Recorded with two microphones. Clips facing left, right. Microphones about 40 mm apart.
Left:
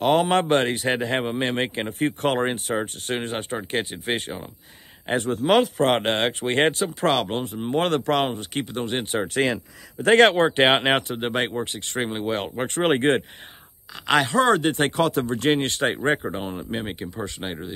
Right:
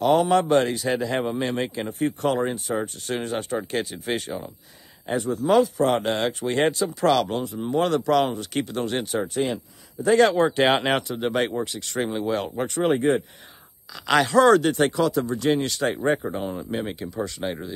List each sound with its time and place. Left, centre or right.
0.0 s speech: left
5.0 s speech: left
8.5 s speech: centre
9.0 s speech: left
9.3 s speech: left
14.0 s speech: left